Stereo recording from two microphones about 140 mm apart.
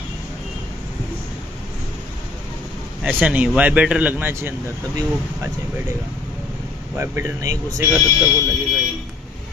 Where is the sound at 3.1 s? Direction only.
10° right (ahead or behind).